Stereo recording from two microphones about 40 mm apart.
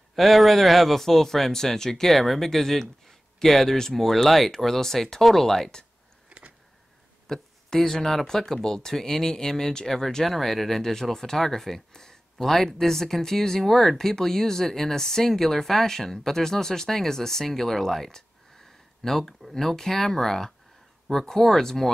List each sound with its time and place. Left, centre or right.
0.1 s a man's voice: centre
6.2 s a sound: right
7.2 s speech: centre